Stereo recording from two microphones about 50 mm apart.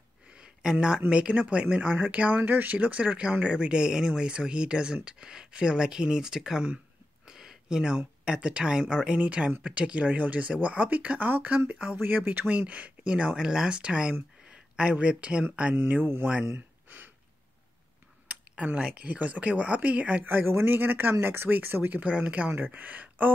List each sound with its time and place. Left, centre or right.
0.4 s a sound: centre
1.1 s speech: right
2.4 s speech: right
13.4 s speech: centre
15.7 s speech: right
16.5 s gasp: right
18.8 s speech: right
20.2 s speech: right
22.0 s speech: right
22.5 s speech: right